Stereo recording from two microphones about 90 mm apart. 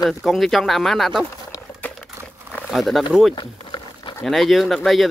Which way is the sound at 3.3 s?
60° left (ahead or behind).